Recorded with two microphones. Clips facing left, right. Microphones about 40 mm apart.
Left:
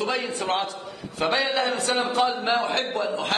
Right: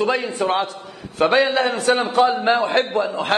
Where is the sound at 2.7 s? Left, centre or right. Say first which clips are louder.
Right 6 dB; right.